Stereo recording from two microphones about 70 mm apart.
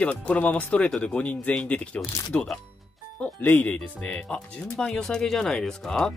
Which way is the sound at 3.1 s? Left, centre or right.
Left.